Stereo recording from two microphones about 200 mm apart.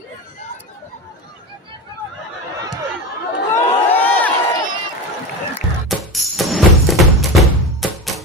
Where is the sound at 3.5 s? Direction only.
10° left (ahead or behind).